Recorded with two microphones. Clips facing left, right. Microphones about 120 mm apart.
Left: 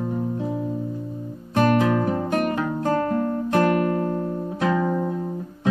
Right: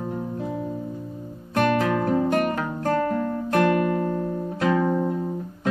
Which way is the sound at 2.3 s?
15° left (ahead or behind).